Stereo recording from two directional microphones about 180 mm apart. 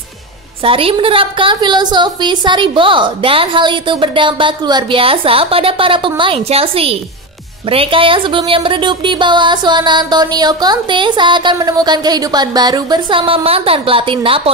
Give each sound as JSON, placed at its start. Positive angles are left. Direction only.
{"t": 0.7, "sound": "speech", "side_deg": -30}